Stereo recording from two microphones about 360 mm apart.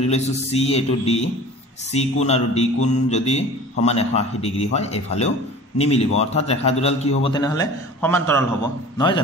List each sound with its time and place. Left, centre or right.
0.0 s a man's voice: centre